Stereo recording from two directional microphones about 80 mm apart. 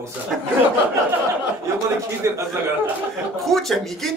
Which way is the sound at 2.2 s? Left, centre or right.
Right.